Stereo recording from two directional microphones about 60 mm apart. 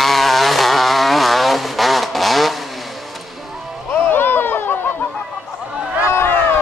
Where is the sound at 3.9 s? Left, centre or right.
Left.